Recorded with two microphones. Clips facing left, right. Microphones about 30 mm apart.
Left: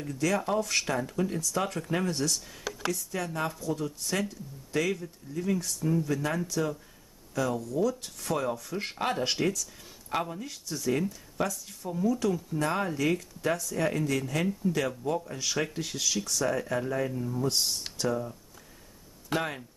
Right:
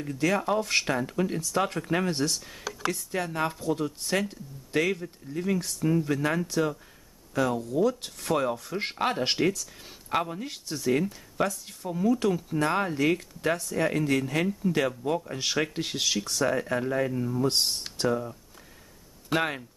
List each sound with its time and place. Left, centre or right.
0.2 s speech: right
8.9 s speech: centre
10.4 s speech: right
12.5 s speech: right
15.3 s speech: right
17.5 s speech: right
18.0 s speech: centre
19.3 s speech: right